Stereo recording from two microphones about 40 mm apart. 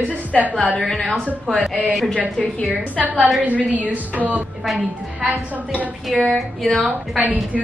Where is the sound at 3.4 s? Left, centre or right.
Right.